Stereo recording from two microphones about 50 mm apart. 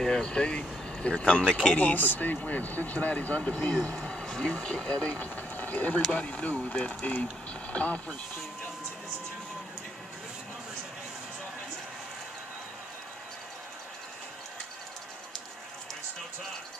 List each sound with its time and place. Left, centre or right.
0.0 s speech: centre
1.8 s speech: left